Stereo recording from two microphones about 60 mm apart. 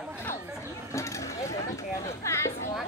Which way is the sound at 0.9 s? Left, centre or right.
Left.